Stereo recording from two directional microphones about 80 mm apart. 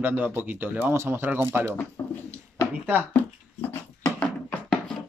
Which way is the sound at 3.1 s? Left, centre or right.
Left.